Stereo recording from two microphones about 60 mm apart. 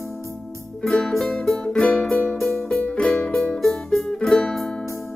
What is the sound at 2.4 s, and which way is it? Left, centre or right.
Music, left.